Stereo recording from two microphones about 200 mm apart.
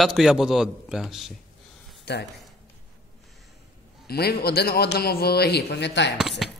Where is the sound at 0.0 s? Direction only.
Centre (ahead or behind).